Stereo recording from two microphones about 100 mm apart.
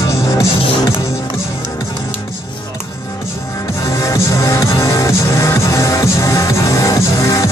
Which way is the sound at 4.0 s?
30° left (ahead or behind).